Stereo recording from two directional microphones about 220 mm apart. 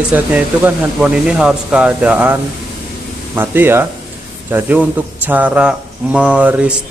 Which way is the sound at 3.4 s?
10° right (ahead or behind).